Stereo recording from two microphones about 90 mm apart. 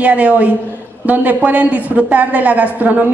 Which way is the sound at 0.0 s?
15° right (ahead or behind).